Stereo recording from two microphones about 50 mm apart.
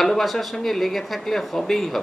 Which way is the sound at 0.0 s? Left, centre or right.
Centre.